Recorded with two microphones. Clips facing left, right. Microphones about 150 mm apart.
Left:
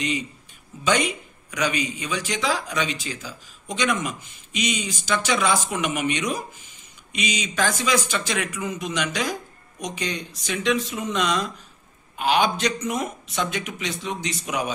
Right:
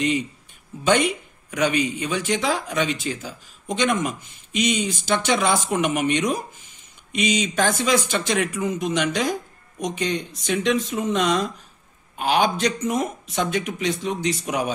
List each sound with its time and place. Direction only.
0.8 s speech: 55° right (ahead or behind)